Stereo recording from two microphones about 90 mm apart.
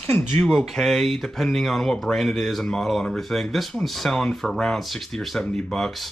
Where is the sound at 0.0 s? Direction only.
15° left (ahead or behind).